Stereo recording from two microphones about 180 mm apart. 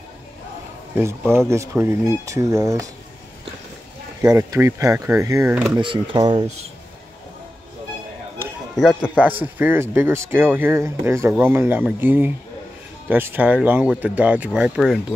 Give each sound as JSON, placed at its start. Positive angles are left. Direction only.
{"t": 1.5, "sound": "speech", "side_deg": -15}
{"t": 4.2, "sound": "speech", "side_deg": -20}
{"t": 5.8, "sound": "speech", "side_deg": -25}
{"t": 8.7, "sound": "speech", "side_deg": -5}